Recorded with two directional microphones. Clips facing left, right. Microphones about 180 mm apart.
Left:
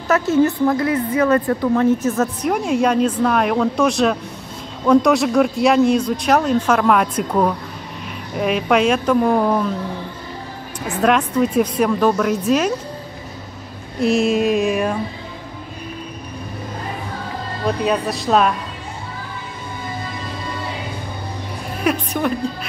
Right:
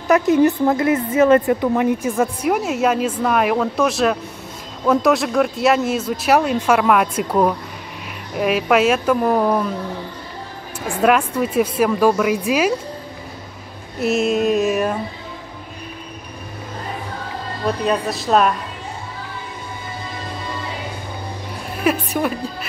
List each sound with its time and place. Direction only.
0.1 s a woman's voice: 15° right (ahead or behind)
10.9 s speech: 10° right (ahead or behind)
13.9 s a woman's voice: 5° right (ahead or behind)
17.8 s a woman's voice: centre (ahead or behind)
21.8 s a woman's voice: 5° right (ahead or behind)